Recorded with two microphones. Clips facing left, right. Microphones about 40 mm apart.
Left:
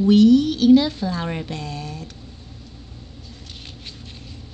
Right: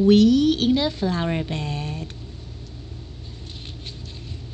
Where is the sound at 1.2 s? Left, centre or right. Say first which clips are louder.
Right 2 dB; centre.